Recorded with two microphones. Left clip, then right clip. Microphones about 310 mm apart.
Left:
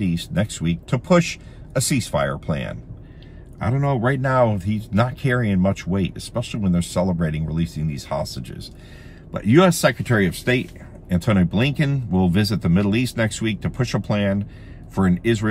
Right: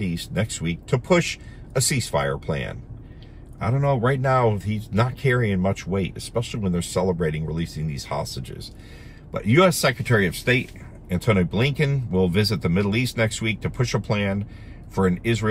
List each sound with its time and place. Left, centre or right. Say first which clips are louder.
0.0 s speech: left 3 dB; centre